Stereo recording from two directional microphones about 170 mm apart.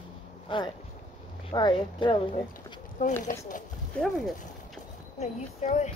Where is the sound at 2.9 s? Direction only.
45° left (ahead or behind).